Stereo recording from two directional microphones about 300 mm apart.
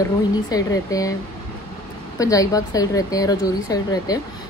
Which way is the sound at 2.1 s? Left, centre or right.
Centre.